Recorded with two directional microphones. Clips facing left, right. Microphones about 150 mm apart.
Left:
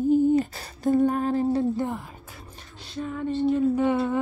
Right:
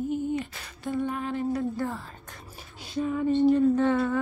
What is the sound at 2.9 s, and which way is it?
Female singing, 5° right (ahead or behind).